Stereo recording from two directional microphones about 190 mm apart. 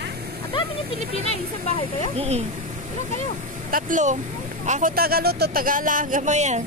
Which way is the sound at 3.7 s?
40° right (ahead or behind).